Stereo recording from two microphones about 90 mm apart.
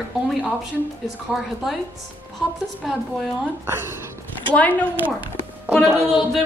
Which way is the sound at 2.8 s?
5° right (ahead or behind).